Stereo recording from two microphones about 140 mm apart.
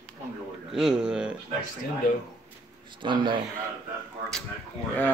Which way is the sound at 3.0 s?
35° right (ahead or behind).